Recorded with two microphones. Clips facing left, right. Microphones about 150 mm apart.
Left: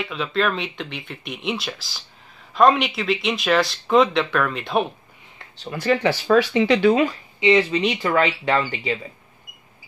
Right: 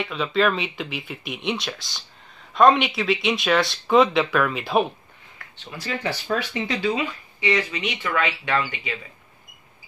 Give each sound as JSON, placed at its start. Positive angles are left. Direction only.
{"t": 0.0, "sound": "speech", "side_deg": 0}
{"t": 5.7, "sound": "speech", "side_deg": 65}
{"t": 7.3, "sound": "speech", "side_deg": 25}